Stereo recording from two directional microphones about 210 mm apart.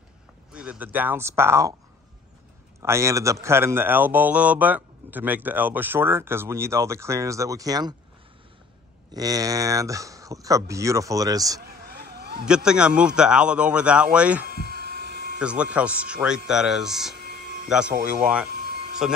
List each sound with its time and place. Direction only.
0.5 s speech: 5° right (ahead or behind)
2.8 s speech: 15° right (ahead or behind)
9.1 s speech: 15° right (ahead or behind)
11.6 s vehicle: 50° right (ahead or behind)
12.4 s speech: 5° right (ahead or behind)
14.5 s a sound: 50° right (ahead or behind)
15.3 s speech: 5° right (ahead or behind)
17.1 s music: 45° right (ahead or behind)
17.6 s speech: 5° right (ahead or behind)
17.9 s speech: 45° right (ahead or behind)
18.6 s music: 45° right (ahead or behind)